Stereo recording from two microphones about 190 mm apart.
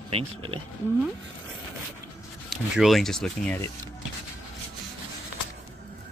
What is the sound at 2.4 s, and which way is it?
Speech, centre (ahead or behind).